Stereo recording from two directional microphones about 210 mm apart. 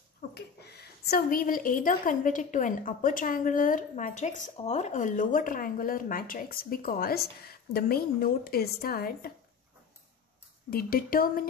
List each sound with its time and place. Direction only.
0.3 s a woman's voice: 50° left (ahead or behind)
10.7 s speech: 45° left (ahead or behind)